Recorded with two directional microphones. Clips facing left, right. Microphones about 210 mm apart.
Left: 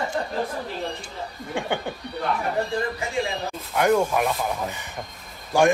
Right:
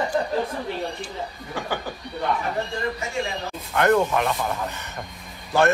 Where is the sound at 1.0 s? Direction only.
25° left (ahead or behind).